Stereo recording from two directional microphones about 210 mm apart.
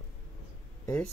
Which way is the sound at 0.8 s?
5° left (ahead or behind).